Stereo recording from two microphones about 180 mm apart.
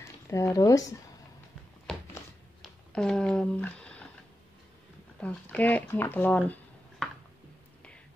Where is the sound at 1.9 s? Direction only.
5° left (ahead or behind).